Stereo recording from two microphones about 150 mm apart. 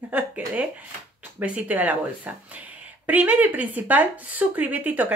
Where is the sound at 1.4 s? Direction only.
10° right (ahead or behind).